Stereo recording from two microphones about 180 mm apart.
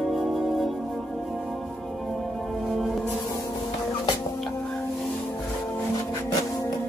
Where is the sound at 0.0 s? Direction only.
Centre (ahead or behind).